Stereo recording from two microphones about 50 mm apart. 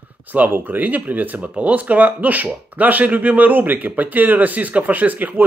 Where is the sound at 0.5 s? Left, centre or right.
Right.